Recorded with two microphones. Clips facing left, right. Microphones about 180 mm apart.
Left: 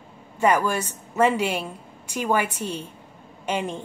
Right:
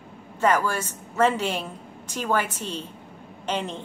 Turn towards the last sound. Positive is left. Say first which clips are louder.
# left 2 dB
turn(degrees=10)  # may be behind; listen again after turning